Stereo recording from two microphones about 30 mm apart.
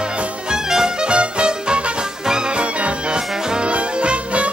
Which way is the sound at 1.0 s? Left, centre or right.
Right.